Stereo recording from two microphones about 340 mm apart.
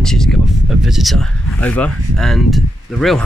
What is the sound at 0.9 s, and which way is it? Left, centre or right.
Speech, centre.